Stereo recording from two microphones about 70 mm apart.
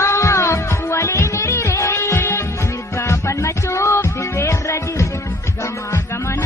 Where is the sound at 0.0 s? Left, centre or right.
Left.